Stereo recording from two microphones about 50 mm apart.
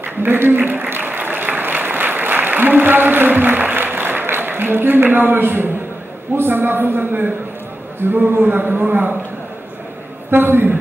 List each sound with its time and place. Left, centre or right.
0.0 s applause: right
6.3 s a man's voice: right
10.3 s a man's voice: right